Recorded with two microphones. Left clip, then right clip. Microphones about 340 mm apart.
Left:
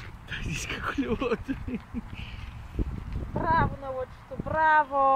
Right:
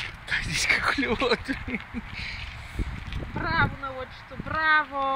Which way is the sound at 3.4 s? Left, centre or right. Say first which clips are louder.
Even; left.